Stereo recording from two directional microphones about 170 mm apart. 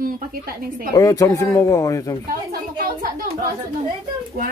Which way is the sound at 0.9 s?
20° left (ahead or behind).